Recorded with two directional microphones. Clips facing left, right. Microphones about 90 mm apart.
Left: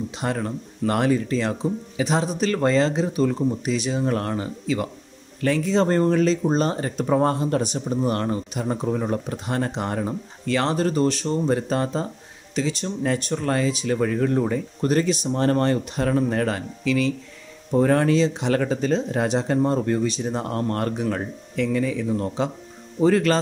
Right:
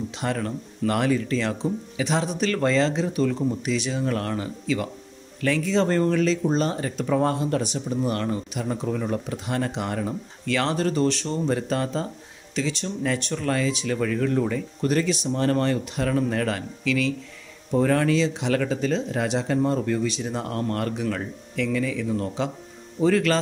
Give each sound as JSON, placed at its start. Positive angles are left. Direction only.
{"t": 0.2, "sound": "speech", "side_deg": 25}